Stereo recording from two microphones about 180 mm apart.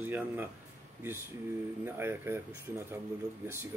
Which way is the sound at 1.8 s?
10° right (ahead or behind).